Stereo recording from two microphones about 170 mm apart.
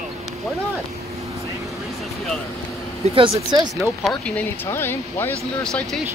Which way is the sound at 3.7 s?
Centre (ahead or behind).